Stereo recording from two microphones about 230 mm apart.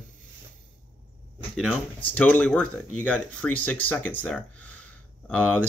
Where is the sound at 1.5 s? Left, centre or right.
Centre.